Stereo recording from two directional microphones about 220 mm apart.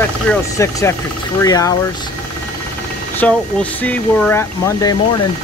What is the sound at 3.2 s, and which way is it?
Speech, 5° left (ahead or behind).